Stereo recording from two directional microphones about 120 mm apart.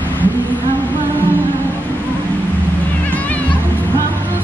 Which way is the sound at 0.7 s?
15° left (ahead or behind).